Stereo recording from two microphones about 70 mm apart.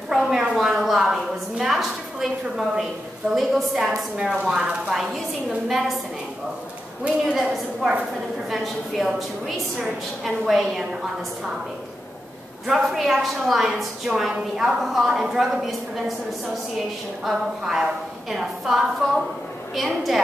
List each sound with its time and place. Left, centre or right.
0.1 s a sound: centre
3.3 s a woman's voice: centre
7.3 s a woman's voice: centre
12.6 s a woman's voice: centre
17.2 s a woman's voice: centre